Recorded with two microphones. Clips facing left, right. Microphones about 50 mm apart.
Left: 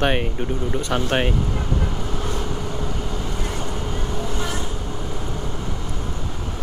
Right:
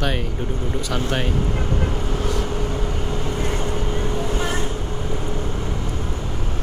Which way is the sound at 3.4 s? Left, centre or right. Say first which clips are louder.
Right 3 dB; right.